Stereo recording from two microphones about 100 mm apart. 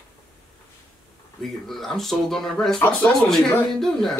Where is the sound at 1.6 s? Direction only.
5° left (ahead or behind).